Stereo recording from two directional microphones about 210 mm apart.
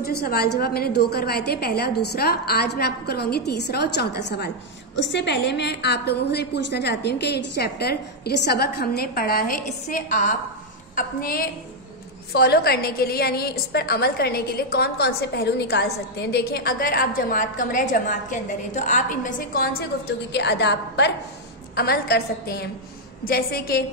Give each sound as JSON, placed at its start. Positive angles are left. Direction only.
{"t": 0.0, "sound": "a woman's voice", "side_deg": 50}